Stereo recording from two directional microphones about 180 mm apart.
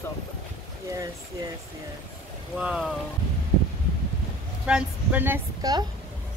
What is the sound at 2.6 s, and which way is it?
Speech, 5° right (ahead or behind).